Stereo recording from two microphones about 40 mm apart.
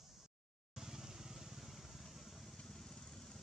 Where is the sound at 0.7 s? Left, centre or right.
Centre.